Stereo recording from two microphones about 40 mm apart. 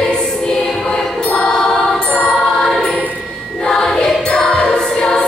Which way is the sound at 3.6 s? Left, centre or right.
Centre.